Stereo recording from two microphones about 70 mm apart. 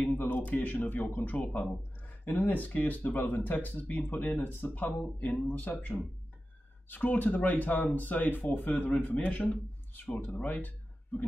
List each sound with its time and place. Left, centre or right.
0.0 s speech: left